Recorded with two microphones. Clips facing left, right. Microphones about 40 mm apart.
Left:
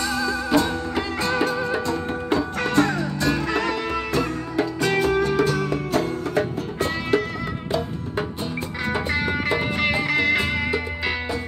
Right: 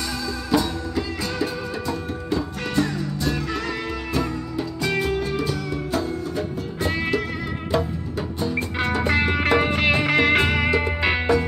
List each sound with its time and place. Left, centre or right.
0.1 s music: left
0.6 s music: left
9.0 s music: right